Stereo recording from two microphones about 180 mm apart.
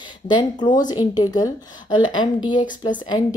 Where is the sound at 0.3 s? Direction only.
25° left (ahead or behind).